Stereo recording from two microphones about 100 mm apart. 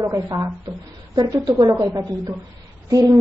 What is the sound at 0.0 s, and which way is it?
A woman's voice, 35° right (ahead or behind).